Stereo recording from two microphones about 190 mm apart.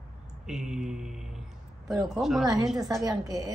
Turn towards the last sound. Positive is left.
turn(degrees=-20)  # may be behind; listen again after turning